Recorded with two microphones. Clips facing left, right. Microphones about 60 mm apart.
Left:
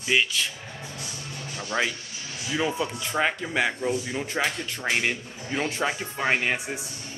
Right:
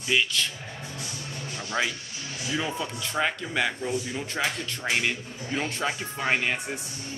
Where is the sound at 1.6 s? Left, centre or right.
Centre.